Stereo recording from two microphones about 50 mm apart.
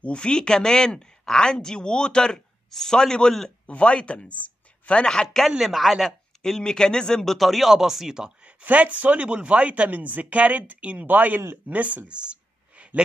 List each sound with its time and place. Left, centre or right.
0.0 s speech: centre
3.6 s speech: left
5.6 s speech: centre
6.6 s speech: centre
7.3 s speech: centre
8.5 s speech: right
11.6 s a sound: right